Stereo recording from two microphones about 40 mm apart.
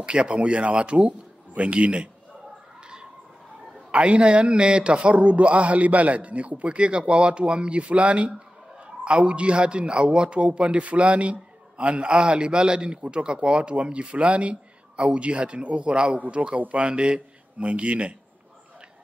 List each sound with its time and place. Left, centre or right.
0.0 s a man's voice: right
3.9 s a man's voice: right
8.8 s a sound: right
9.2 s a man's voice: right
16.5 s a man's voice: right